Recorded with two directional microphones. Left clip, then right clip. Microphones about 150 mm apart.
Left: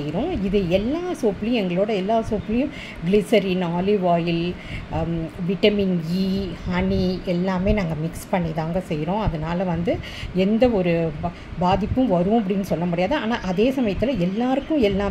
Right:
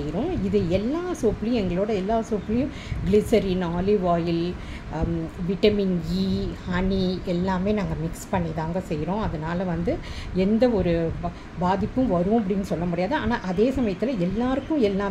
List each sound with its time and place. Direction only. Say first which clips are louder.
0.1 s a woman's voice: left 2 dB; 10° left (ahead or behind)
5.6 s a woman's voice: left 2 dB; 15° left (ahead or behind)